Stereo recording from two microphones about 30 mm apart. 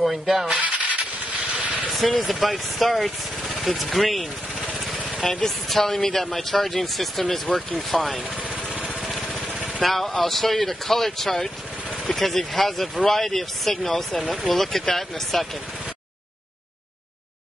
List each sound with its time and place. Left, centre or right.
0.0 s speech: centre
0.6 s vehicle: right
2.2 s speech: centre
5.2 s speech: centre
9.8 s speech: centre